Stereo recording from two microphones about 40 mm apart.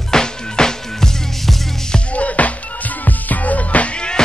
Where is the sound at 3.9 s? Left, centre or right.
Left.